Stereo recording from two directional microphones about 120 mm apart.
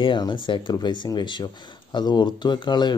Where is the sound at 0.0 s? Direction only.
40° left (ahead or behind).